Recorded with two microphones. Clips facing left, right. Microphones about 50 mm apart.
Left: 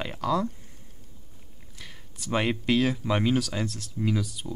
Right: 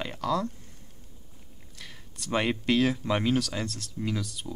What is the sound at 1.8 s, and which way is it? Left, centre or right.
Speech, centre.